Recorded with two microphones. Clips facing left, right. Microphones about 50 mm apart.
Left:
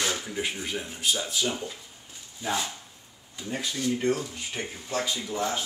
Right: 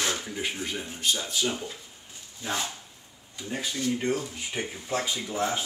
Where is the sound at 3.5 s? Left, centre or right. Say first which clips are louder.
Even; centre.